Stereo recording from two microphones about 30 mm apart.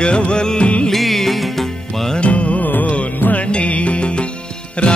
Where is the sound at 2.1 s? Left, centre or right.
Left.